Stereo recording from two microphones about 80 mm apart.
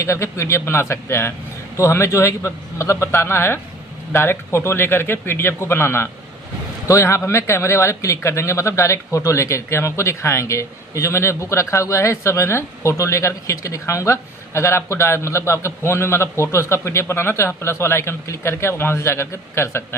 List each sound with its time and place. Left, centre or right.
0.0 s a man's voice: left